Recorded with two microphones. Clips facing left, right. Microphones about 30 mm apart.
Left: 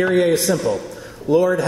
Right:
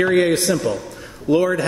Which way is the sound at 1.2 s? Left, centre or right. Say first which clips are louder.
Left 1 dB; right.